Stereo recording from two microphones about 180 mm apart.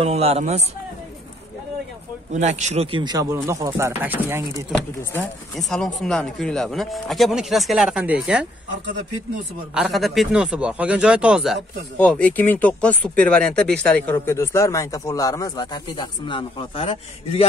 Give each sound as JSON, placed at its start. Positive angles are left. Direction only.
{"t": 0.0, "sound": "speech", "side_deg": -35}
{"t": 2.3, "sound": "speech", "side_deg": -40}
{"t": 4.7, "sound": "speech", "side_deg": 5}
{"t": 9.8, "sound": "speech", "side_deg": 0}